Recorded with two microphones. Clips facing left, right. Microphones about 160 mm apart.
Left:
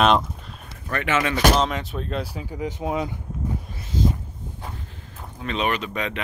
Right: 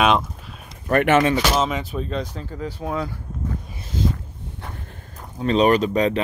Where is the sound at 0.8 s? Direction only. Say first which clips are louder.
Right 8 dB; 50° right (ahead or behind).